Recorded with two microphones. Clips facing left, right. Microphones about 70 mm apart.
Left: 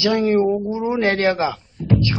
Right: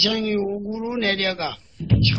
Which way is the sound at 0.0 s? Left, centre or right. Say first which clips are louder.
Left 6 dB; left.